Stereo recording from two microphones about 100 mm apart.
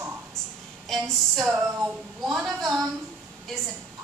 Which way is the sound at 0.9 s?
Centre (ahead or behind).